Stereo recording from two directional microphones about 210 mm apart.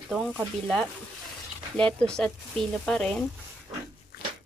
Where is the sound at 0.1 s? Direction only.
Centre (ahead or behind).